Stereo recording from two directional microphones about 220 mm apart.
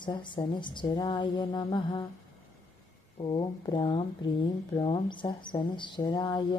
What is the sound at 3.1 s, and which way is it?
Speech, 20° left (ahead or behind).